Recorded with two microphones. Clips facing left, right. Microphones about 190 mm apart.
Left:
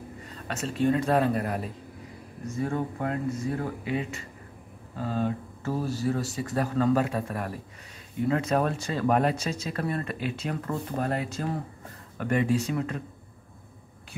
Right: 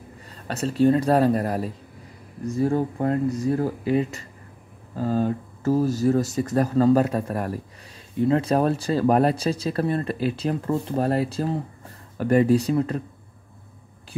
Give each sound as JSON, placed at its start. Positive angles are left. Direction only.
{"t": 0.5, "sound": "speech", "side_deg": -35}